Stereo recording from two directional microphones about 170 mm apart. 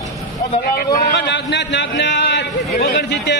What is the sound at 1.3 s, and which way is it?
A man's voice, 90° left.